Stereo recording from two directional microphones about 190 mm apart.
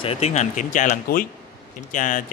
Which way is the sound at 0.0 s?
35° left (ahead or behind).